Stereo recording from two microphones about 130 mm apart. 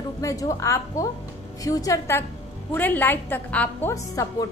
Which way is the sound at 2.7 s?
15° left (ahead or behind).